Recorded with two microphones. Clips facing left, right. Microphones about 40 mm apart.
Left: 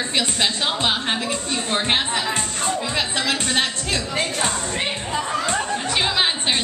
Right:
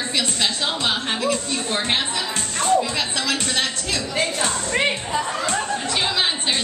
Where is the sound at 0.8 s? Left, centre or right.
Left.